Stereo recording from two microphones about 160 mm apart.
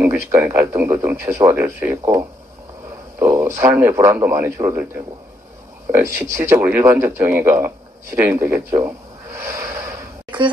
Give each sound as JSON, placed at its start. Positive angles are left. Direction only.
{"t": 0.0, "sound": "speech", "side_deg": -15}
{"t": 5.9, "sound": "speech", "side_deg": -15}